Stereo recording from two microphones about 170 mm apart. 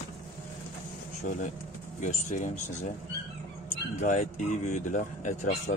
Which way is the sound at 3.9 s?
45° left (ahead or behind).